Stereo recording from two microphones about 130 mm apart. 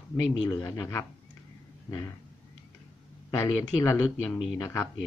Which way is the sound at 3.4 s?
25° left (ahead or behind).